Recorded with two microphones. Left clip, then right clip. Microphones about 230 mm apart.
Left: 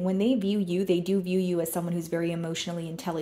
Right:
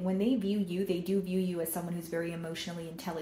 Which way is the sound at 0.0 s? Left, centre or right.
Left.